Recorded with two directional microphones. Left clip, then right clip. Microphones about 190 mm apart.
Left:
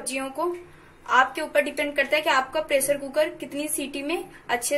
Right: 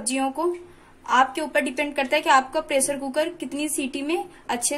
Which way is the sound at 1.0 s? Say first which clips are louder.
Right 1 dB; 45° right (ahead or behind).